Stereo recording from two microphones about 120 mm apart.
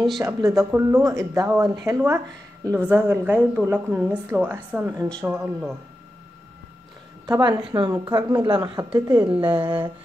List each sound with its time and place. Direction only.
0.2 s a woman's voice: 25° right (ahead or behind)
7.2 s a woman's voice: 30° right (ahead or behind)